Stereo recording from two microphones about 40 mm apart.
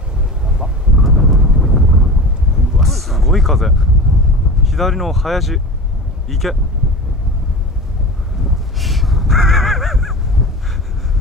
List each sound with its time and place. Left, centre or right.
0.5 s a sound: centre
4.6 s speech: centre
8.5 s crow: centre